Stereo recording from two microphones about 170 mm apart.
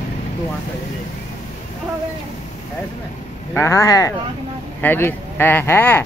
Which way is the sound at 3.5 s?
15° left (ahead or behind).